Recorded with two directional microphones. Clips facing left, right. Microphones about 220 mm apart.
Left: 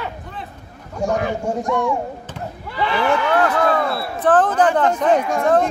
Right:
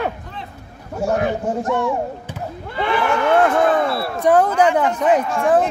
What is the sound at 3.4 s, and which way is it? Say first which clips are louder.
Basketball bounce: right 2 dB; 20° right (ahead or behind).